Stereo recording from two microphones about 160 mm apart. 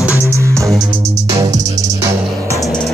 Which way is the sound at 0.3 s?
20° right (ahead or behind).